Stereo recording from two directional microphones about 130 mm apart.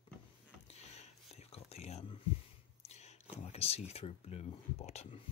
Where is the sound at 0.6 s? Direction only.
55° left (ahead or behind).